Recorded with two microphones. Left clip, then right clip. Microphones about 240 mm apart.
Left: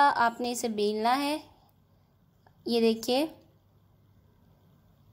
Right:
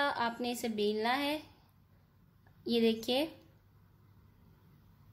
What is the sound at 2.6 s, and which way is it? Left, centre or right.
Speech, left.